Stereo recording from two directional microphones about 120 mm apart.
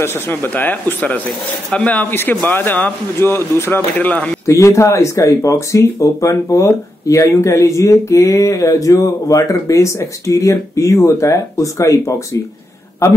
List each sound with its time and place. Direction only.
0.0 s speech: 20° left (ahead or behind)
4.5 s speech: 25° left (ahead or behind)